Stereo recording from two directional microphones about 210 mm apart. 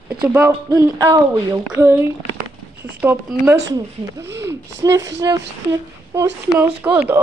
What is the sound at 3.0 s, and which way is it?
Speech, 10° right (ahead or behind).